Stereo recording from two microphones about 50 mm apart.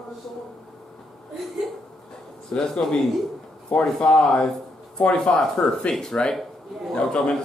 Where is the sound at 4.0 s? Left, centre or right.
Centre.